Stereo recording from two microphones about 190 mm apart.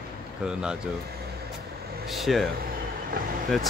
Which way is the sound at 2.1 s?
Centre (ahead or behind).